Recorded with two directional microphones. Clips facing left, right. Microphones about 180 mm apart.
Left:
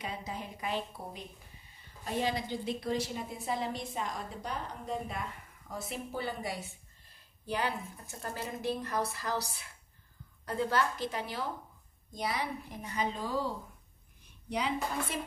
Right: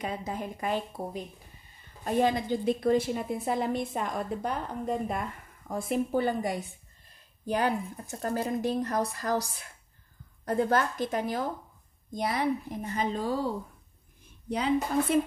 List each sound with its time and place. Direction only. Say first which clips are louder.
0.0 s a woman's voice: right 6 dB; 50° right (ahead or behind)